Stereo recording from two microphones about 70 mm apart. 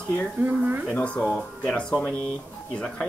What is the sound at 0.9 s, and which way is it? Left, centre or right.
Speech, centre.